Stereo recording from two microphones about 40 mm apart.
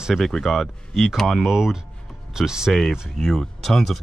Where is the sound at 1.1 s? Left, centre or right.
Centre.